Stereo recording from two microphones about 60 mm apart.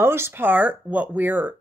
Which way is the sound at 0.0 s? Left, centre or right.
Right.